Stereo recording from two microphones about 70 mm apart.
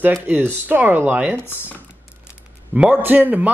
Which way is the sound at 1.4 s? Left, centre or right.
Left.